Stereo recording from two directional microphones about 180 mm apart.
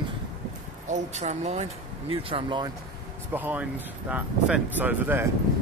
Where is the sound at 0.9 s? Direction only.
40° right (ahead or behind).